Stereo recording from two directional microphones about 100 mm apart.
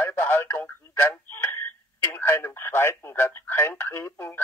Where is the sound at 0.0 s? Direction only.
25° left (ahead or behind).